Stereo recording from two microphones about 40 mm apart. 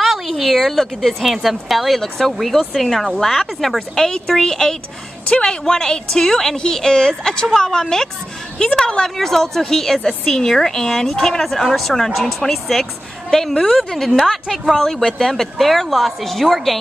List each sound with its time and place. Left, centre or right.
0.0 s a woman's voice: centre; by 9.0 s left
9.0 s a woman's voice: centre